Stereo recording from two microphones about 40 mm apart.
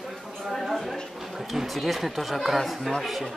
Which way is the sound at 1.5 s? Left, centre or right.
Centre.